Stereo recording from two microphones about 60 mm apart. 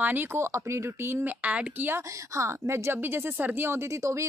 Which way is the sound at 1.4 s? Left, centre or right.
Right.